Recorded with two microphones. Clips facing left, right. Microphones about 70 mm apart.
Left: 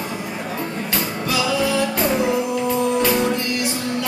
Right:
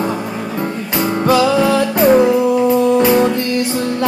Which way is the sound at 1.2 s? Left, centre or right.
Right.